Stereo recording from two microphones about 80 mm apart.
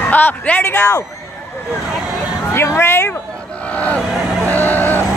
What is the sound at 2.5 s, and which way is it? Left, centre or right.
Speech, left.